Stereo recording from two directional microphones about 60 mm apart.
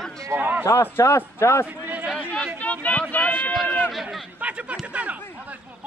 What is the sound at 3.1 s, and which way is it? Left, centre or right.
Speech, left.